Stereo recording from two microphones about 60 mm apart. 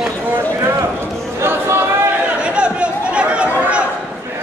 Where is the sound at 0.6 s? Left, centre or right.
Right.